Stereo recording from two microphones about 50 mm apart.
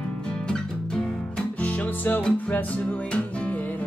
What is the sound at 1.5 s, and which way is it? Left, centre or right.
Music, left.